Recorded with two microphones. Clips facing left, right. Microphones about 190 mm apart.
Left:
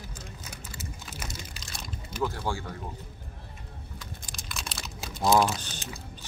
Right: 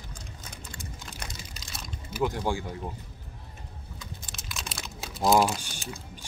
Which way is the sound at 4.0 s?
Centre (ahead or behind).